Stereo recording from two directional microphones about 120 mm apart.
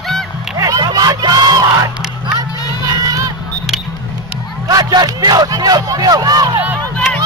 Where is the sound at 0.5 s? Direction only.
30° right (ahead or behind).